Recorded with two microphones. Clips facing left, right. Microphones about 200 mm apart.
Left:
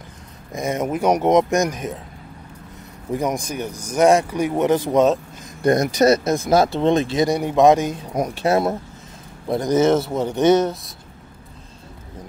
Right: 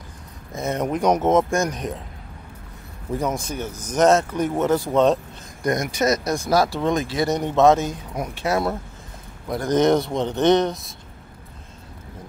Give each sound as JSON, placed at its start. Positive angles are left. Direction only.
{"t": 0.5, "sound": "speech", "side_deg": 10}
{"t": 3.2, "sound": "speech", "side_deg": 15}
{"t": 5.6, "sound": "speech", "side_deg": 30}
{"t": 7.2, "sound": "speech", "side_deg": 10}
{"t": 8.1, "sound": "speech", "side_deg": 35}
{"t": 9.7, "sound": "speech", "side_deg": 5}